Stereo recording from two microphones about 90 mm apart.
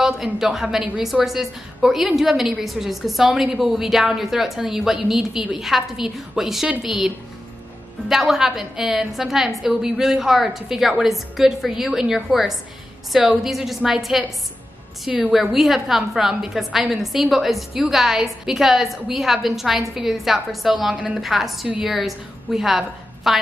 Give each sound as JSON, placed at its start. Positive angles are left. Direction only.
{"t": 0.0, "sound": "a woman's voice", "side_deg": -5}
{"t": 8.1, "sound": "a woman's voice", "side_deg": -5}